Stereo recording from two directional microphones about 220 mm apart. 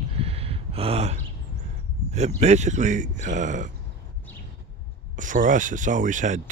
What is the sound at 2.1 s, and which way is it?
Speech, 30° right (ahead or behind).